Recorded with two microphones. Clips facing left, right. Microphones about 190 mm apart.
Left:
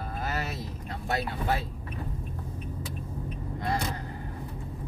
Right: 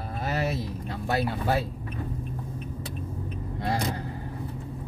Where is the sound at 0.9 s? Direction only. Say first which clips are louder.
Right 4 dB; 30° right (ahead or behind).